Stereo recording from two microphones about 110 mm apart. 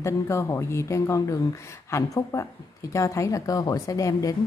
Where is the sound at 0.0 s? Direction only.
25° left (ahead or behind).